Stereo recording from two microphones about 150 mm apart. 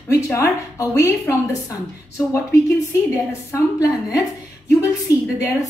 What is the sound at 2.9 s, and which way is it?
Speech, 20° left (ahead or behind).